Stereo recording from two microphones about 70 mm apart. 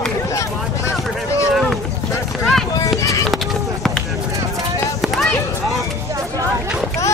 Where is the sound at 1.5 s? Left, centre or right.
Centre.